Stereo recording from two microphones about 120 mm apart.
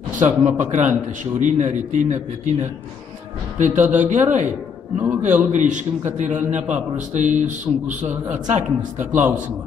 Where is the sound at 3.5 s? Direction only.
90° right.